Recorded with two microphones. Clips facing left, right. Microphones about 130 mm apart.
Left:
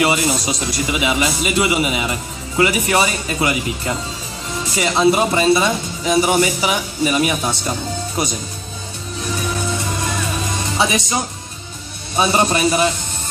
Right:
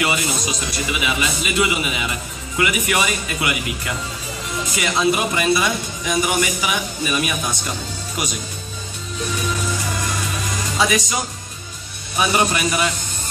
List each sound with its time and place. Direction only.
0.0 s speech: 35° left (ahead or behind)
10.8 s speech: 25° left (ahead or behind)
12.2 s speech: 30° left (ahead or behind)